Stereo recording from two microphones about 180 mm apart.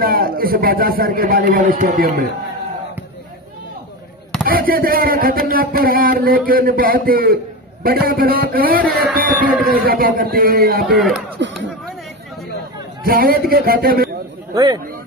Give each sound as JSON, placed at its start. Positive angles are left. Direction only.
{"t": 0.0, "sound": "speech", "side_deg": -55}
{"t": 4.5, "sound": "speech", "side_deg": -55}
{"t": 11.0, "sound": "speech", "side_deg": 0}
{"t": 13.0, "sound": "speech", "side_deg": -55}
{"t": 14.5, "sound": "speech", "side_deg": -25}